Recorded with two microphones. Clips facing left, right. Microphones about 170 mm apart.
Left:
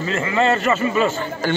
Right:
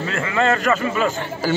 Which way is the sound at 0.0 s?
Centre (ahead or behind).